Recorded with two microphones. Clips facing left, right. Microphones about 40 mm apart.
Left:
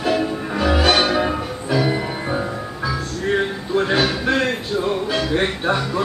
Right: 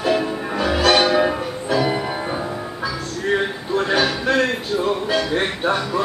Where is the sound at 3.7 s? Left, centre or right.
Centre.